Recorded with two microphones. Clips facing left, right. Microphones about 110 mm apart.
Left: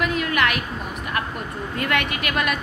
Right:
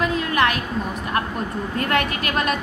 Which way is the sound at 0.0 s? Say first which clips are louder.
Right 2 dB; 30° right (ahead or behind).